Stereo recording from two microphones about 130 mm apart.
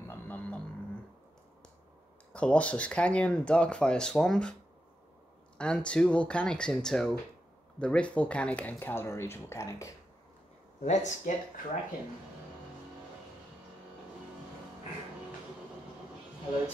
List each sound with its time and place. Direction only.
0.1 s didgeridoo: 15° left (ahead or behind)
2.3 s speech: 10° left (ahead or behind)
5.6 s speech: 10° left (ahead or behind); by 9.9 s 25° left (ahead or behind)
10.8 s speech: 65° left (ahead or behind)